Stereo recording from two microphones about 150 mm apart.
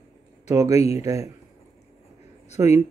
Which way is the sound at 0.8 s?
45° left (ahead or behind).